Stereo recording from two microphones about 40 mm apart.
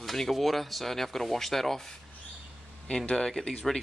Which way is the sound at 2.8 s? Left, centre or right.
Left.